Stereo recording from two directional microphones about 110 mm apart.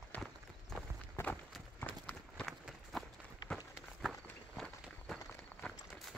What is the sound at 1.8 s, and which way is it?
Run, 15° left (ahead or behind).